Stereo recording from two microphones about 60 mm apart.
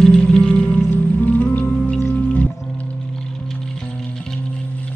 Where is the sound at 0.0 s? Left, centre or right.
Centre; by 2.4 s left.